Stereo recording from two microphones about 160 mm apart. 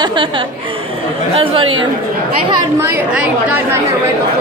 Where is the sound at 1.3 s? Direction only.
35° right (ahead or behind).